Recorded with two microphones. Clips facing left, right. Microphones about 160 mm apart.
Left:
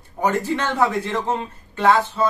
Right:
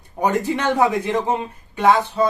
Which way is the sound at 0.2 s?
15° right (ahead or behind).